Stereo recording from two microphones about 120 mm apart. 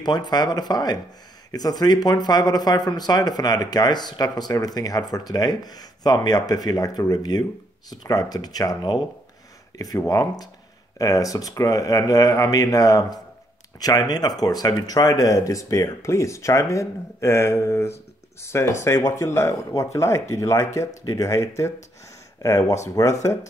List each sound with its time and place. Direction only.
0.0 s speech: 35° left (ahead or behind)